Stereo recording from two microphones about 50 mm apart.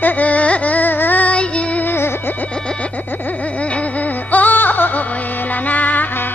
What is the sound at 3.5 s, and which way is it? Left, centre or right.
Music, left.